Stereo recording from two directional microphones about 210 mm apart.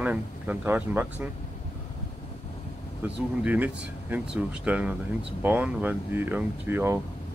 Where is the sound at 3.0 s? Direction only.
5° right (ahead or behind).